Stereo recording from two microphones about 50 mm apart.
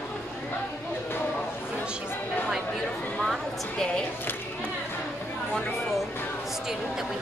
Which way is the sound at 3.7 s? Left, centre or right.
Centre.